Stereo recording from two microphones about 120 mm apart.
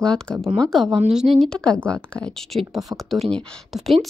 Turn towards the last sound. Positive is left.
turn(degrees=5)  # may be behind; listen again after turning